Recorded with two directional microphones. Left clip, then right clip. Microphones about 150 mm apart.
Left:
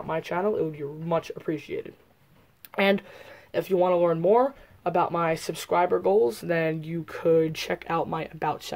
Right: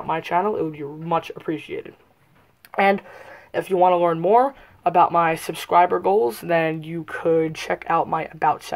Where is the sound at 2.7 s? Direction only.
45° left (ahead or behind).